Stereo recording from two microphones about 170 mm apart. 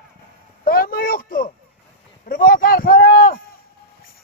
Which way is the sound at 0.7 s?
60° left (ahead or behind).